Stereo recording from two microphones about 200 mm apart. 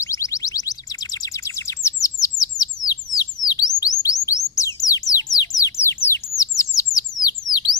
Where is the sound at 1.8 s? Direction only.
15° left (ahead or behind).